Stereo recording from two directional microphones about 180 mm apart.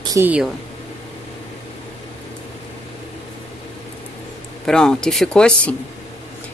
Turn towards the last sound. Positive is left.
turn(degrees=5)  # may be behind; listen again after turning